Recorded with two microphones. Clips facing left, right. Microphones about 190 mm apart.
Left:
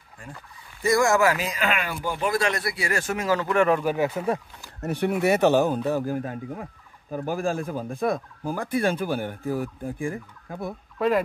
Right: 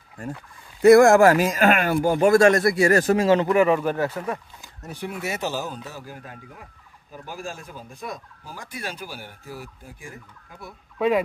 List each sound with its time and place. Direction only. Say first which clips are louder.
0.8 s speech: right 8 dB; 60° right (ahead or behind); by 3.4 s 30° right (ahead or behind)
3.4 s speech: right 2 dB; centre (ahead or behind)
3.9 s speech: left 1 dB; 15° left (ahead or behind)
4.8 s speech: left 9 dB; 65° left (ahead or behind)
11.0 s speech: right 1 dB; centre (ahead or behind)